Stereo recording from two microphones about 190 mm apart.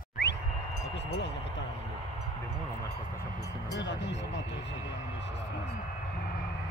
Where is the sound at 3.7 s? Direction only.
65° left (ahead or behind).